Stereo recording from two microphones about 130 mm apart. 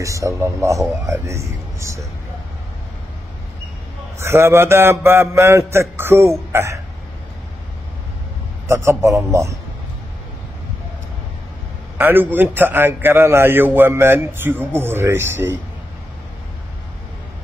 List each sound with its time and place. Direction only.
0.0 s a man's voice: 25° right (ahead or behind)
4.2 s a man's voice: 20° right (ahead or behind)
8.6 s a man's voice: 20° right (ahead or behind)
12.0 s a man's voice: 15° right (ahead or behind)